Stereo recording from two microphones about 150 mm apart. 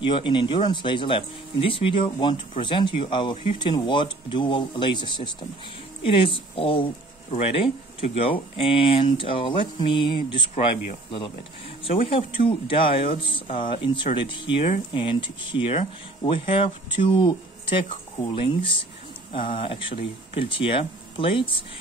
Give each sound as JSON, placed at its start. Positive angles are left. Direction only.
{"t": 0.0, "sound": "speech", "side_deg": 35}